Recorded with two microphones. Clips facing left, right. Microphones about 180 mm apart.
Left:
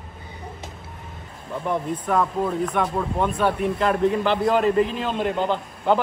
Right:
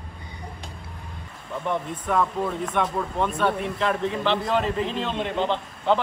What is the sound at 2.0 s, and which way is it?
A man's voice, 5° left (ahead or behind).